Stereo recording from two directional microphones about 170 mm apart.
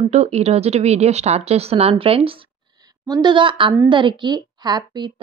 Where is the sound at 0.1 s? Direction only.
40° right (ahead or behind).